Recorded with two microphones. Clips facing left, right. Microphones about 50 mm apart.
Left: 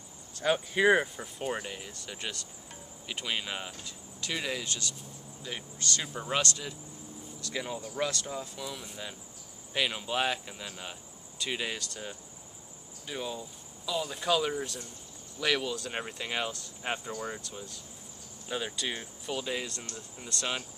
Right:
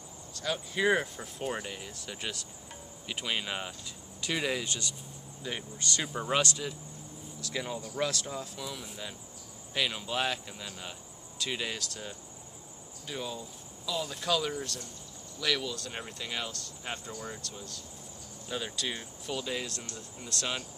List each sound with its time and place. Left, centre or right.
0.4 s speech: left
0.8 s speech: centre